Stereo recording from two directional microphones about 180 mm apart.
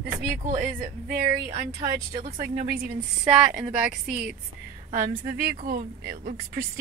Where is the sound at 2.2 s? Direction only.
40° right (ahead or behind).